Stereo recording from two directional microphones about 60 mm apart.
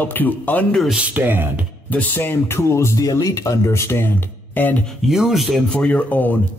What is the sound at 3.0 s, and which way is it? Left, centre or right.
Speech, left.